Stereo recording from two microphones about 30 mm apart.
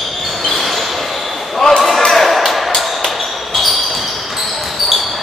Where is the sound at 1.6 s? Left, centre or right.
Centre.